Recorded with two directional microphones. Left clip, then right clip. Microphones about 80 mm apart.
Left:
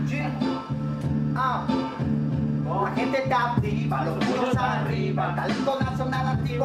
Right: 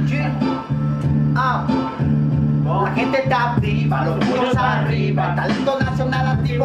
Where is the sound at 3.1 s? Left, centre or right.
Centre.